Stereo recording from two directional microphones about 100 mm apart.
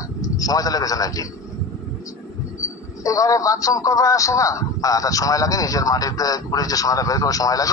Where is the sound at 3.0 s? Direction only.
35° left (ahead or behind).